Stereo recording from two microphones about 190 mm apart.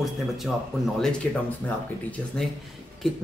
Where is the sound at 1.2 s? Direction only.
5° left (ahead or behind).